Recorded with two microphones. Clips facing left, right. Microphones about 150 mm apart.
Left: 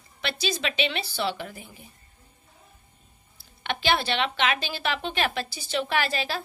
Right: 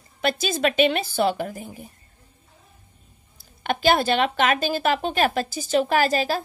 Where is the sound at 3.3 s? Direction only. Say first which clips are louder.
Right 6 dB; 45° right (ahead or behind).